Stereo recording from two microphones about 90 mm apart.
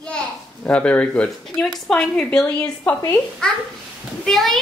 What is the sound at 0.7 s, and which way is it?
A woman's voice, 15° left (ahead or behind).